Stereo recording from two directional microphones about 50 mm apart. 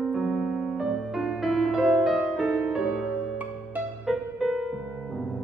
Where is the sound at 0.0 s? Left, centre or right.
Centre.